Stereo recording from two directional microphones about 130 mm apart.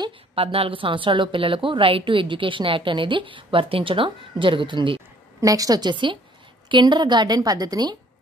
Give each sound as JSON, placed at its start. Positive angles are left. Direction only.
{"t": 0.0, "sound": "a woman's voice", "side_deg": -45}
{"t": 5.4, "sound": "a woman's voice", "side_deg": -25}